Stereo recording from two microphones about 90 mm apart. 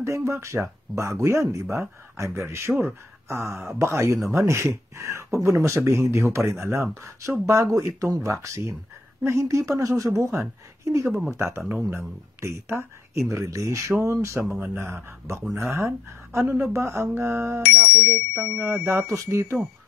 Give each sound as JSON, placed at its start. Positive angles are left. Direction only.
{"t": 0.0, "sound": "speech", "side_deg": -30}
{"t": 17.7, "sound": "speech", "side_deg": -15}
{"t": 19.0, "sound": "speech", "side_deg": -35}